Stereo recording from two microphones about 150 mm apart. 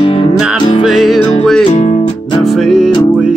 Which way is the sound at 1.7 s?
45° left (ahead or behind).